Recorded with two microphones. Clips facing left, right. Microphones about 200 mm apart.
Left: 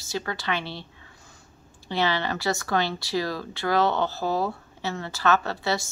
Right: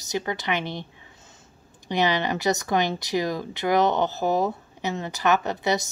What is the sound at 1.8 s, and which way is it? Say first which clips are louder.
A woman's voice: right 2 dB; 15° right (ahead or behind).